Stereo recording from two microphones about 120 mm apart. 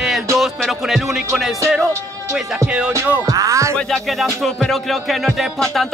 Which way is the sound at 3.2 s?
25° right (ahead or behind).